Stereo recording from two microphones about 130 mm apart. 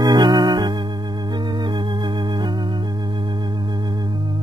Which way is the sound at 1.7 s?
35° right (ahead or behind).